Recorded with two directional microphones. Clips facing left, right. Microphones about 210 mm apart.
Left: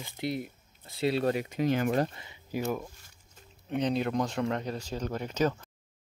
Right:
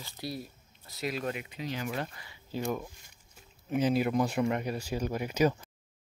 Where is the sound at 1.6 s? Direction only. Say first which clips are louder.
Left 9 dB; 55° left (ahead or behind).